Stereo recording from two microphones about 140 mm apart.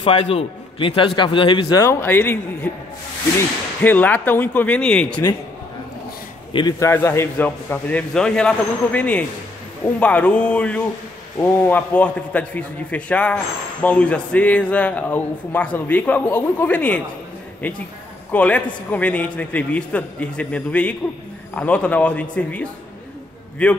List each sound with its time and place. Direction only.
0.0 s a man's voice: 45° left (ahead or behind)
1.8 s speech: 15° left (ahead or behind)
6.5 s a man's voice: 30° left (ahead or behind)
6.9 s speech: 20° left (ahead or behind)